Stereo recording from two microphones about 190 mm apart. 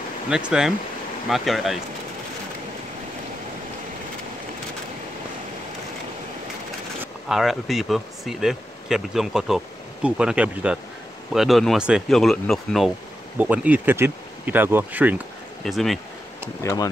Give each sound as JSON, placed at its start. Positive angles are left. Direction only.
{"t": 0.3, "sound": "speech", "side_deg": -5}
{"t": 7.0, "sound": "speech", "side_deg": 0}
{"t": 16.6, "sound": "speech", "side_deg": 20}